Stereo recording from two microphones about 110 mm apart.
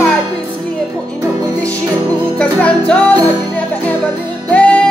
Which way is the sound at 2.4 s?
10° left (ahead or behind).